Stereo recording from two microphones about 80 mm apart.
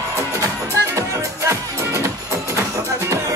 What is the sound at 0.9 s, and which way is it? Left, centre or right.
Music, right.